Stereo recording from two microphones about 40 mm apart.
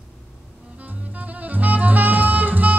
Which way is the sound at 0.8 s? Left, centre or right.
Right.